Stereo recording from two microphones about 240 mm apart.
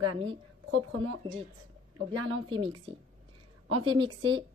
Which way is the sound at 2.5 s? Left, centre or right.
Right.